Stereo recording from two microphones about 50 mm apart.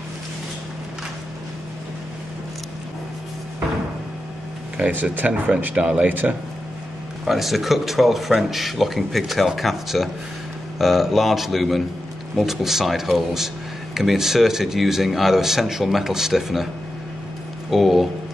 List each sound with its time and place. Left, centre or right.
4.7 s speech: right
7.2 s speech: centre
17.6 s speech: centre